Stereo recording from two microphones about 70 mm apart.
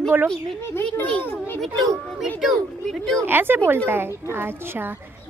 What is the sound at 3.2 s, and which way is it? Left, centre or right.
A woman's voice, right.